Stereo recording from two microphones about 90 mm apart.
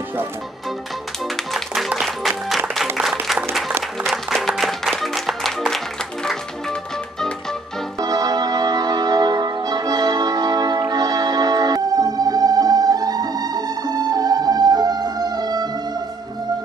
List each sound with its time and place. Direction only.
1.2 s music: centre (ahead or behind)
3.0 s applause: 5° right (ahead or behind)
4.1 s music: centre (ahead or behind)
8.0 s music: 45° right (ahead or behind)